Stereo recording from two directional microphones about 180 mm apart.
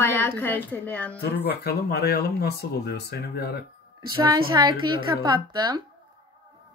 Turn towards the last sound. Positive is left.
turn(degrees=-25)  # may be behind; listen again after turning